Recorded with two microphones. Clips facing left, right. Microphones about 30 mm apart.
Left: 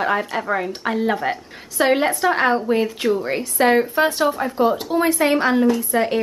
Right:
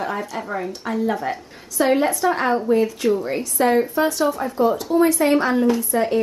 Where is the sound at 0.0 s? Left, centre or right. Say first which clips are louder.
Left 5 dB; left.